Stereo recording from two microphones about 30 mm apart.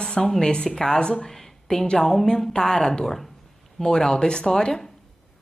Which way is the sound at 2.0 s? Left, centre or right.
Centre.